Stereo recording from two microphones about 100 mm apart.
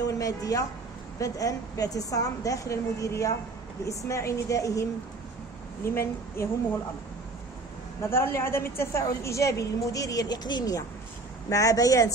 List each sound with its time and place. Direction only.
0.0 s a woman's voice: 35° left (ahead or behind)
5.9 s a woman's voice: 25° left (ahead or behind)
8.0 s a woman's voice: 25° left (ahead or behind)